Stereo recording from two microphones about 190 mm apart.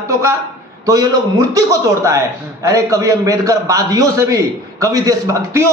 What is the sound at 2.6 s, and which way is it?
A man's voice, 15° right (ahead or behind).